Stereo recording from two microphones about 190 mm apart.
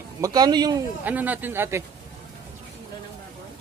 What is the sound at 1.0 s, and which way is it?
Speech, 10° right (ahead or behind).